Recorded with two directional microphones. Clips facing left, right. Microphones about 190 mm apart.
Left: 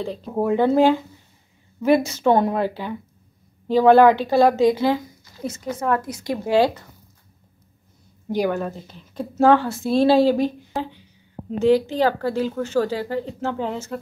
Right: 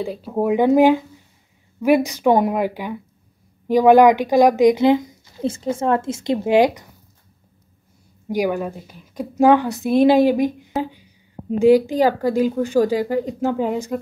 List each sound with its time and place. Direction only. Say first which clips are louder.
0.0 s speech: right 2 dB; 10° right (ahead or behind)
8.3 s speech: right 1 dB; 10° right (ahead or behind)
10.7 s a sound: right 4 dB; 10° right (ahead or behind)
11.5 s speech: right 4 dB; 10° right (ahead or behind)